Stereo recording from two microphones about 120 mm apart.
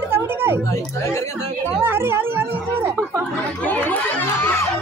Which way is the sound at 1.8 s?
20° right (ahead or behind).